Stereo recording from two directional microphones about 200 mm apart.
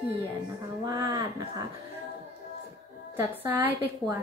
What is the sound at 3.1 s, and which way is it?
Speech, 10° right (ahead or behind).